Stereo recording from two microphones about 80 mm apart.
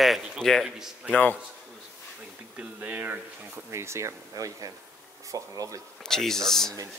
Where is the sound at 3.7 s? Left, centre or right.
Right.